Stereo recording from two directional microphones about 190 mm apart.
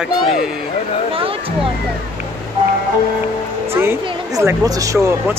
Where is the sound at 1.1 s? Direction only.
30° right (ahead or behind).